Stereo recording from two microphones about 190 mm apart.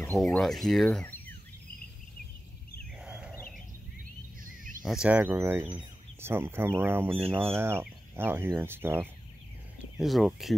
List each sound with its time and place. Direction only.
0.2 s speech: centre (ahead or behind)
3.0 s a sound: 5° right (ahead or behind)
5.0 s speech: 10° right (ahead or behind)
9.9 s speech: centre (ahead or behind)